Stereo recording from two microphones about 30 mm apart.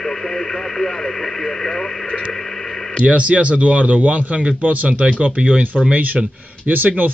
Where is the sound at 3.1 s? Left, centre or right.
Right.